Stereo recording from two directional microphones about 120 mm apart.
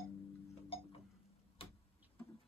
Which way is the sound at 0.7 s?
50° left (ahead or behind).